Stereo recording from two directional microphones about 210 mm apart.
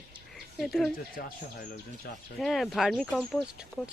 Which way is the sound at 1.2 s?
40° left (ahead or behind).